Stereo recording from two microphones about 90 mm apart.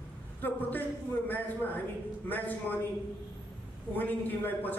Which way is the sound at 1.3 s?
20° left (ahead or behind).